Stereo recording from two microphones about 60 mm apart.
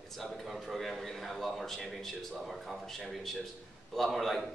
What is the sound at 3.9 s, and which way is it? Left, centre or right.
Speech, centre.